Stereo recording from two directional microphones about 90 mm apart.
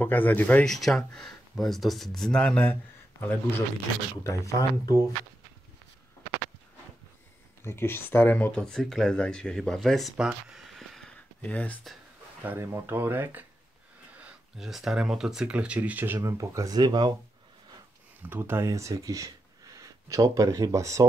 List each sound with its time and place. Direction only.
0.0 s speech: 20° left (ahead or behind)
0.7 s speech: centre (ahead or behind)
2.6 s speech: 20° left (ahead or behind)
4.2 s speech: 35° left (ahead or behind)
7.6 s speech: 25° left (ahead or behind)
8.5 s speech: 10° left (ahead or behind)
10.1 s a sound: 5° right (ahead or behind)
11.4 s speech: 15° left (ahead or behind)
12.4 s speech: 25° right (ahead or behind)
14.6 s speech: 5° right (ahead or behind); by 16.2 s 20° right (ahead or behind)
16.2 s speech: 35° right (ahead or behind)
18.2 s speech: 25° right (ahead or behind)